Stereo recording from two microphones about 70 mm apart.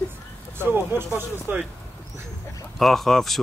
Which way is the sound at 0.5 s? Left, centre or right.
Right.